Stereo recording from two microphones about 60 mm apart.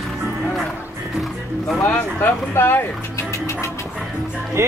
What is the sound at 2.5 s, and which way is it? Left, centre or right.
Speech, left.